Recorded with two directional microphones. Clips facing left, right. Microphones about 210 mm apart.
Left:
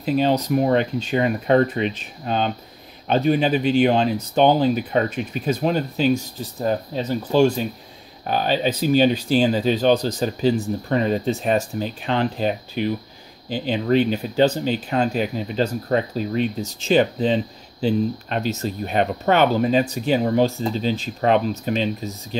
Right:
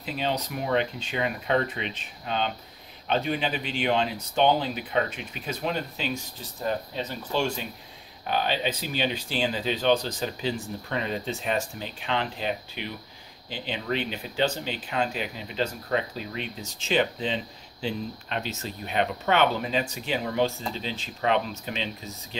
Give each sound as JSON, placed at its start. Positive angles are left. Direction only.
{"t": 0.0, "sound": "speech", "side_deg": 45}